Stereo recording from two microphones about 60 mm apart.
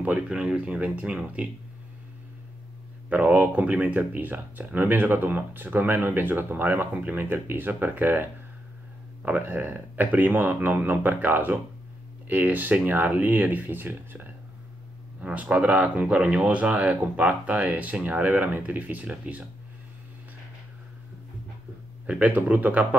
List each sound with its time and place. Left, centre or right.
0.0 s speech: centre
3.1 s speech: right
15.1 s speech: right
22.0 s speech: right